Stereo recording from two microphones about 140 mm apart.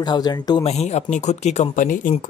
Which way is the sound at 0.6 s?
50° left (ahead or behind).